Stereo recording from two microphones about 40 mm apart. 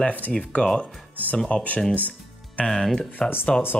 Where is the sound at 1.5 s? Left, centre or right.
Left.